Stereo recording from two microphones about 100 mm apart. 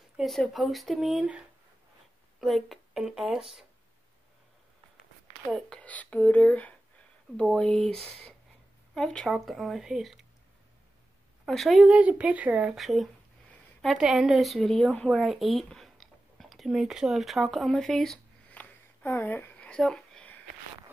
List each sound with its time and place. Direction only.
0.5 s speech: centre (ahead or behind)
2.4 s speech: centre (ahead or behind)
5.7 s speech: 15° left (ahead or behind)
11.4 s speech: centre (ahead or behind)
12.0 s speech: 15° right (ahead or behind); by 18.2 s 5° left (ahead or behind)
18.6 s a sound: 15° left (ahead or behind)